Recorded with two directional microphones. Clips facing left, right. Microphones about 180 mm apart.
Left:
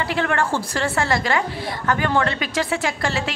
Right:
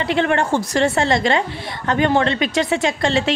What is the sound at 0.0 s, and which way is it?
A woman's voice, 20° right (ahead or behind).